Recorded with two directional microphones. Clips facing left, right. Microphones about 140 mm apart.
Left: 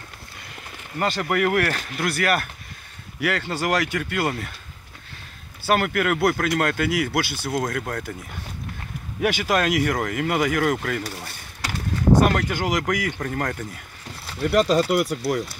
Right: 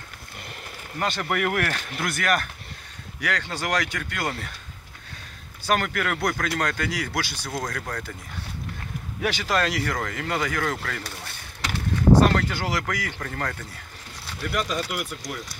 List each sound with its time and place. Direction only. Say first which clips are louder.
0.9 s speech: left 3 dB; 5° left (ahead or behind)
5.7 s speech: left 4 dB; 10° left (ahead or behind)
9.2 s speech: left 3 dB; 15° left (ahead or behind)
14.4 s speech: left 9 dB; 35° left (ahead or behind)